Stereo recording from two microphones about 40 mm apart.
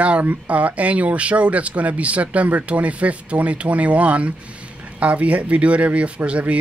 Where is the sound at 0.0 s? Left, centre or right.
Right.